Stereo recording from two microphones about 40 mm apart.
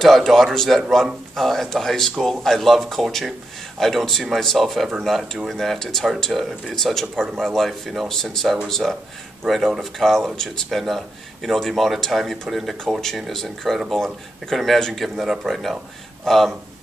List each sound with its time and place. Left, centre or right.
0.0 s speech: centre